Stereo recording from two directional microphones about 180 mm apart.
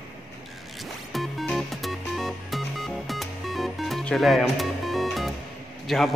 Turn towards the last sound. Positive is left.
turn(degrees=0)  # may be behind; listen again after turning